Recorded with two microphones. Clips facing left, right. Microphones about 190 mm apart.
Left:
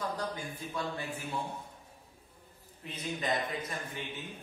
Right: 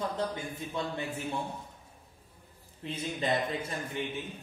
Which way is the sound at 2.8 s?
30° right (ahead or behind).